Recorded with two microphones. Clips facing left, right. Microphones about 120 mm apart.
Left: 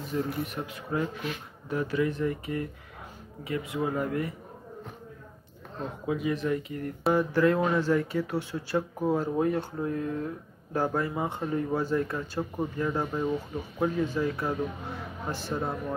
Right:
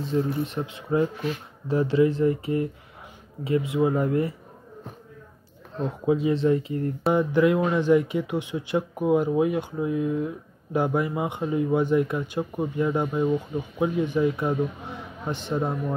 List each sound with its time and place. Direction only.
0.0 s speech: 25° right (ahead or behind)
6.0 s speech: 25° right (ahead or behind)